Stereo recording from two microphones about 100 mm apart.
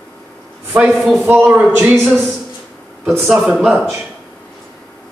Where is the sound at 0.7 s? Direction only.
5° right (ahead or behind).